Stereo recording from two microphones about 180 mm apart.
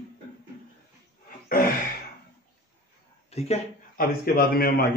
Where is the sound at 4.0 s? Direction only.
55° left (ahead or behind).